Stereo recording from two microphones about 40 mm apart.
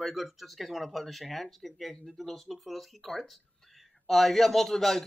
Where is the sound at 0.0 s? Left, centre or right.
Centre.